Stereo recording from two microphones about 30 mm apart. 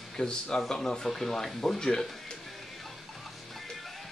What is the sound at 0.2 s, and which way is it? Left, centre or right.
Speech, left.